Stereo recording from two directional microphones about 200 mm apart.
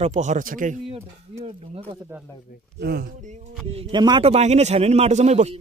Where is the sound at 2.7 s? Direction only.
50° right (ahead or behind).